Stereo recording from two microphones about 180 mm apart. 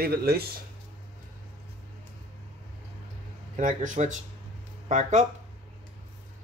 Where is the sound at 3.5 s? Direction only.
45° right (ahead or behind).